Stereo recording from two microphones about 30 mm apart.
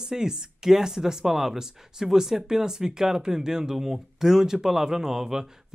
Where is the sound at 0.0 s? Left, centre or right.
Right.